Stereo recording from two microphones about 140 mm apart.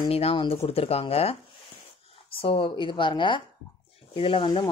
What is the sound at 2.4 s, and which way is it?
Speech, 40° left (ahead or behind).